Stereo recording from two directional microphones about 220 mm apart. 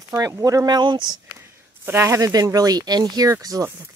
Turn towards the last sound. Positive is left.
turn(degrees=-15)  # may be behind; listen again after turning